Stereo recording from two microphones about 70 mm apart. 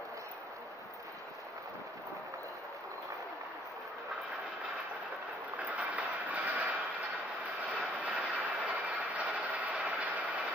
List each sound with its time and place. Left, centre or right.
5.6 s train: right
7.7 s vehicle: right